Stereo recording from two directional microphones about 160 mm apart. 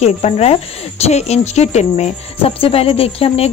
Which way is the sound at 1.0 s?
45° left (ahead or behind).